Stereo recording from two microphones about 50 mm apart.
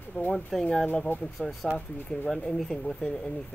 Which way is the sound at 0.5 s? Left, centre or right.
Centre.